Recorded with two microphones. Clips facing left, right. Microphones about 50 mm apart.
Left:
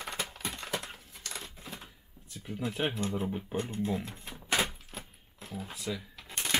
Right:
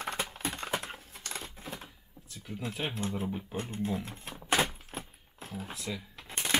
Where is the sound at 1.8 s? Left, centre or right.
Centre.